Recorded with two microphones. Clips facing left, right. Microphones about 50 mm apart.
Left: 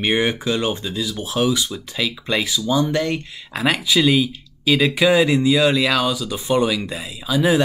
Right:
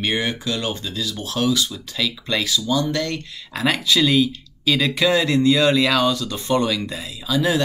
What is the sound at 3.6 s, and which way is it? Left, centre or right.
Speech, centre.